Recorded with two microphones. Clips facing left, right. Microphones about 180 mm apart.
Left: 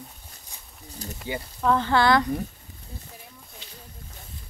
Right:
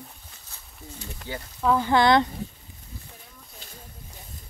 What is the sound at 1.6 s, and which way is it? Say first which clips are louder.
Speech: right 1 dB; 10° right (ahead or behind).